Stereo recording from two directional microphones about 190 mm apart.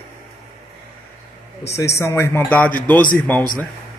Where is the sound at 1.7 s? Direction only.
15° left (ahead or behind).